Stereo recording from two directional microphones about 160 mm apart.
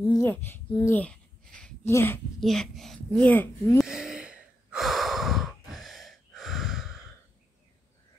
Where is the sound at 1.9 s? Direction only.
15° left (ahead or behind).